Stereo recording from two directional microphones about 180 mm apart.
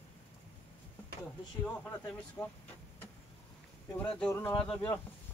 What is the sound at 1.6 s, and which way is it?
Speech, 10° left (ahead or behind).